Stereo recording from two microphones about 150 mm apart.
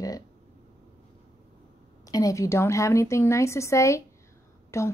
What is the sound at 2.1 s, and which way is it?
Speech, 20° left (ahead or behind).